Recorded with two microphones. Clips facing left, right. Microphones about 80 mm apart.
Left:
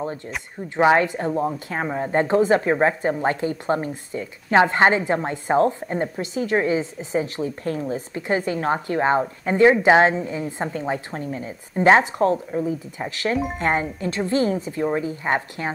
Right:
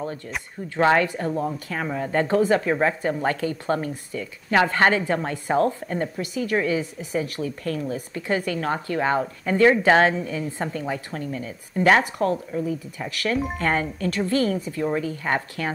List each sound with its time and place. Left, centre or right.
0.7 s a woman's voice: centre